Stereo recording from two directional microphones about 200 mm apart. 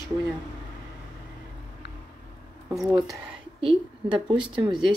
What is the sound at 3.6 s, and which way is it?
Speech, 25° right (ahead or behind).